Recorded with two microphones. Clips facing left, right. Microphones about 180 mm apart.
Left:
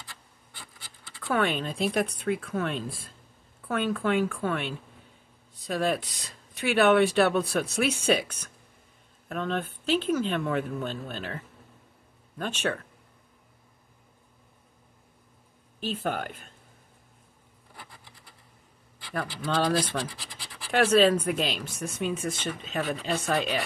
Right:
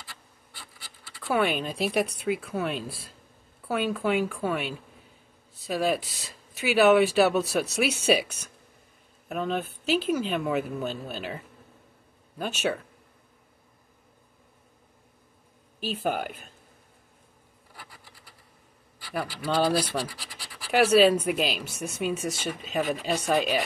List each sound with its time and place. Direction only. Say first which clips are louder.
0.5 s rub: even; 20° left (ahead or behind)
1.2 s speech: right 1 dB; 10° right (ahead or behind)
15.8 s speech: right 2 dB; 10° right (ahead or behind)
19.4 s speech: right 1 dB; 5° right (ahead or behind)